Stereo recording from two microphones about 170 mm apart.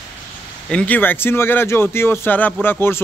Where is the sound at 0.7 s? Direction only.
10° left (ahead or behind).